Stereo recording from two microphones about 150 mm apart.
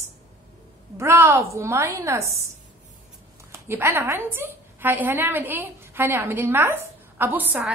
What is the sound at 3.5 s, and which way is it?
A woman's voice, 15° right (ahead or behind).